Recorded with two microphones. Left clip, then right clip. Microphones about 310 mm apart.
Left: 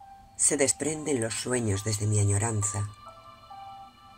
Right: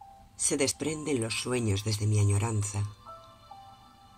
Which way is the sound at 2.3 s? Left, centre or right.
Left.